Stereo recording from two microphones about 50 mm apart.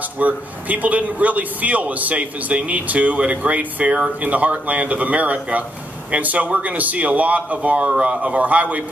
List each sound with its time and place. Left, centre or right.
0.2 s a man's voice: right